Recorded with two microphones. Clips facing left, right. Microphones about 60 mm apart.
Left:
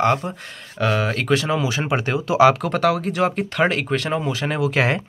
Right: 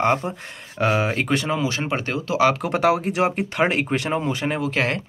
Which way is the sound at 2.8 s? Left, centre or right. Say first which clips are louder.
Right 1 dB; right.